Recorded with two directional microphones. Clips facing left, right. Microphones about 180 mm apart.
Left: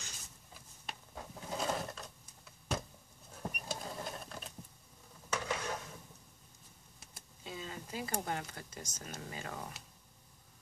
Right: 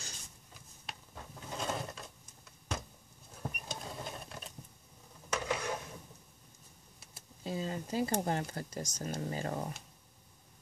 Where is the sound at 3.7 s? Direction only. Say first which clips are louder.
Left 3 dB; centre (ahead or behind).